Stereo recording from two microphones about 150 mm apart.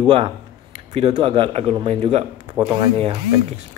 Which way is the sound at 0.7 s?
45° right (ahead or behind).